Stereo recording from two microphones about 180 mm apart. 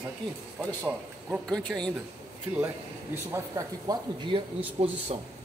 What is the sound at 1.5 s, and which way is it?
Speech, 5° left (ahead or behind).